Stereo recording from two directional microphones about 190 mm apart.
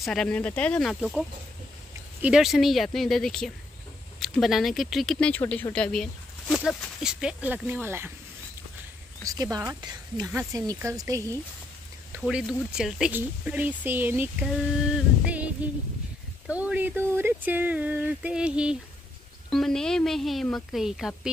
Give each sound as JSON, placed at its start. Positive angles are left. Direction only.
{"t": 0.0, "sound": "speech", "side_deg": 5}
{"t": 2.2, "sound": "speech", "side_deg": 0}
{"t": 9.2, "sound": "speech", "side_deg": -20}
{"t": 12.2, "sound": "speech", "side_deg": 0}
{"t": 15.2, "sound": "a sound", "side_deg": -5}
{"t": 16.4, "sound": "speech", "side_deg": -5}